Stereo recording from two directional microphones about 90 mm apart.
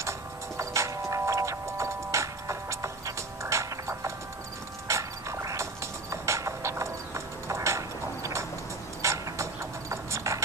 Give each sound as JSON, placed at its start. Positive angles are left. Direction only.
{"t": 0.6, "sound": "music", "side_deg": -35}
{"t": 4.8, "sound": "mechanisms", "side_deg": -35}
{"t": 9.0, "sound": "a sound", "side_deg": -35}